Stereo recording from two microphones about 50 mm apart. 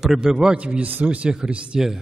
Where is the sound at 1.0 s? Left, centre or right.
Right.